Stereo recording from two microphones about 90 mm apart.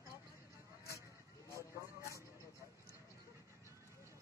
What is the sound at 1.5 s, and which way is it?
Vehicle, 35° left (ahead or behind).